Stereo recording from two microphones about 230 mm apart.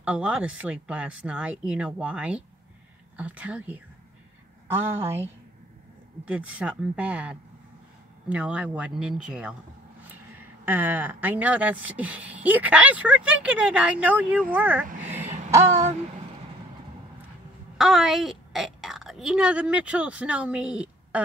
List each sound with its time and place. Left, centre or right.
0.0 s speech: centre
6.2 s speech: centre
10.6 s speech: centre
15.7 s speech: right
17.7 s a woman's voice: centre